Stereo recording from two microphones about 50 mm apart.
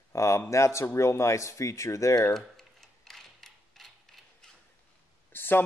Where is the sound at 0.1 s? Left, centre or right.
Left.